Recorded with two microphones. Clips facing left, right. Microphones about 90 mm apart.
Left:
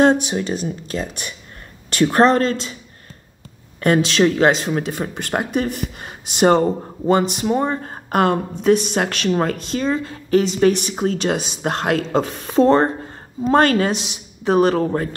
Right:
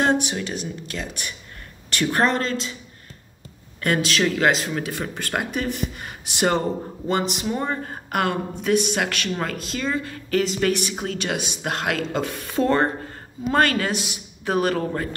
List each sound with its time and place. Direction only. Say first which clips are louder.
0.1 s a woman's voice: left 3 dB; 30° left (ahead or behind)
3.8 s a woman's voice: left 6 dB; 30° left (ahead or behind)
7.8 s a woman's voice: left 6 dB; 35° left (ahead or behind)